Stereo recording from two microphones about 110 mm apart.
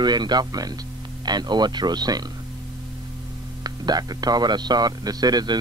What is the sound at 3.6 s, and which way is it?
Speech, 35° right (ahead or behind).